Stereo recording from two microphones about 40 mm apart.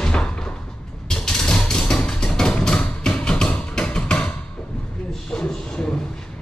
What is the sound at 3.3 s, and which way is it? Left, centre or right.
Music, left.